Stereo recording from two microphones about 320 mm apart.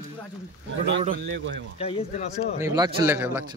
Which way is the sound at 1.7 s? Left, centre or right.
Centre.